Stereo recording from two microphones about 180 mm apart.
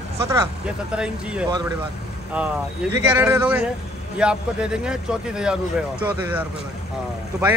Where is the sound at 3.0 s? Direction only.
15° right (ahead or behind).